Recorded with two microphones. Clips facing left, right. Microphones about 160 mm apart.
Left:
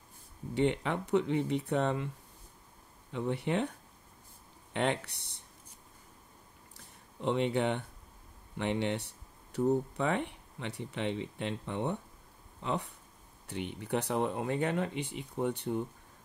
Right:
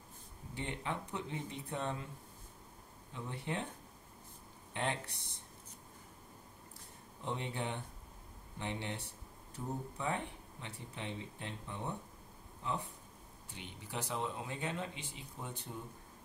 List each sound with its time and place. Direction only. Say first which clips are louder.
0.6 s speech: left 11 dB; 75° left (ahead or behind)
3.1 s speech: left 9 dB; 70° left (ahead or behind)
4.7 s speech: left 7 dB; 75° left (ahead or behind)
7.2 s speech: left 11 dB; 75° left (ahead or behind)
13.5 s speech: left 13 dB; 60° left (ahead or behind)